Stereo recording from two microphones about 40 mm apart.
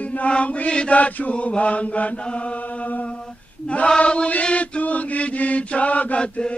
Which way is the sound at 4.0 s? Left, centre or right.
Left.